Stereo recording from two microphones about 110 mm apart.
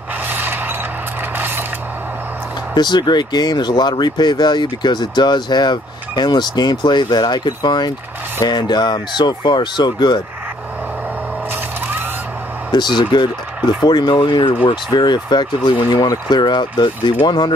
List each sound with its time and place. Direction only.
0.3 s mechanisms: 20° right (ahead or behind)
2.7 s speech: 40° left (ahead or behind)
12.7 s speech: 40° left (ahead or behind)